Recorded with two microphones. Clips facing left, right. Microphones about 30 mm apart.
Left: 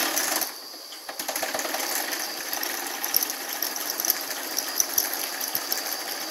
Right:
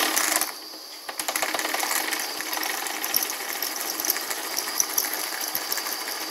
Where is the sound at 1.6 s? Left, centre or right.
Right.